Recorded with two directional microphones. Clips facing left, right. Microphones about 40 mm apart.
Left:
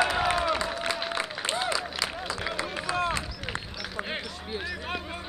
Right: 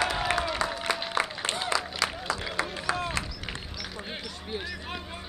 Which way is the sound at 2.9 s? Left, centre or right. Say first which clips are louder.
Left 3 dB; left.